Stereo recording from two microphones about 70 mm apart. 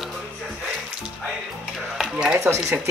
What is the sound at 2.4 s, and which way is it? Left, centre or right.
Speech, right.